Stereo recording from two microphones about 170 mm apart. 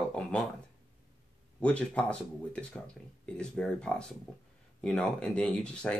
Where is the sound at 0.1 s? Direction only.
5° left (ahead or behind).